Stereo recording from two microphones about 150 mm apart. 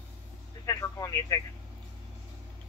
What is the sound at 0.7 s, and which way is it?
Speech, 20° left (ahead or behind).